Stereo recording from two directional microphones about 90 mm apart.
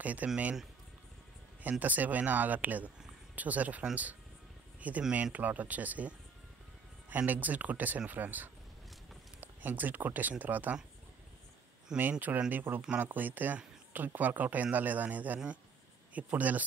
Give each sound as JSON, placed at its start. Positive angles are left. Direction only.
{"t": 0.0, "sound": "speech", "side_deg": -15}
{"t": 1.6, "sound": "speech", "side_deg": -20}
{"t": 12.0, "sound": "speech", "side_deg": -20}